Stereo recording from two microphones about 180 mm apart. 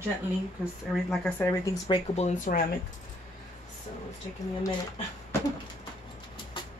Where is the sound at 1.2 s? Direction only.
15° left (ahead or behind).